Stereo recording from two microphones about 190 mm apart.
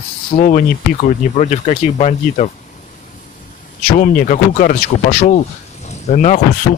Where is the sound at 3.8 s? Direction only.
50° left (ahead or behind).